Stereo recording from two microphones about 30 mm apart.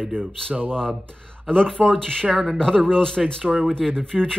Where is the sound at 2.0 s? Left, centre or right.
Left.